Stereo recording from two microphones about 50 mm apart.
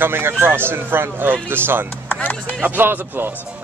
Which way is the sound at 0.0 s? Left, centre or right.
Right.